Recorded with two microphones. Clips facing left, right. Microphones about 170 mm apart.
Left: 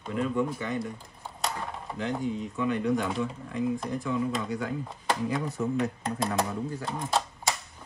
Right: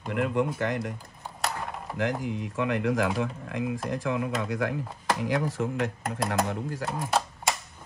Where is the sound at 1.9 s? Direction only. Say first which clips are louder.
Right 1 dB; 90° right.